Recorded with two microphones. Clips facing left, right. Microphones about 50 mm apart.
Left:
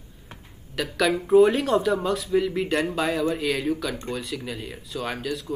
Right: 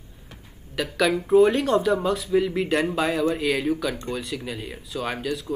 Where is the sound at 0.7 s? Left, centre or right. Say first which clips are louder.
Right 1 dB; centre.